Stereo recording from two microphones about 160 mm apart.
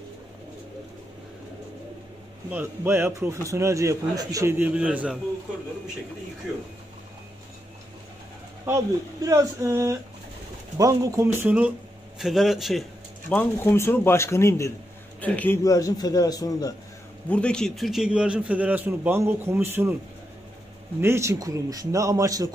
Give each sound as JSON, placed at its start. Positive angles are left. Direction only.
{"t": 2.5, "sound": "a man's voice", "side_deg": -15}
{"t": 8.6, "sound": "a man's voice", "side_deg": -20}
{"t": 13.3, "sound": "a man's voice", "side_deg": 15}
{"t": 15.6, "sound": "a man's voice", "side_deg": 20}
{"t": 17.3, "sound": "a man's voice", "side_deg": 5}
{"t": 21.0, "sound": "a man's voice", "side_deg": -15}